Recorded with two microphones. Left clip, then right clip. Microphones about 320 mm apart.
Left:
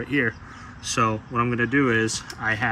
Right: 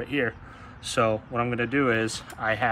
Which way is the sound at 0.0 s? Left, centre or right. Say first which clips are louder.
Left 3 dB; centre.